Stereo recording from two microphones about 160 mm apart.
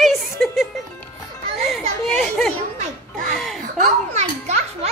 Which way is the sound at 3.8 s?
45° right (ahead or behind).